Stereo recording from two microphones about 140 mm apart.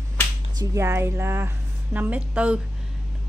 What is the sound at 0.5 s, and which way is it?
A woman's voice, 20° right (ahead or behind).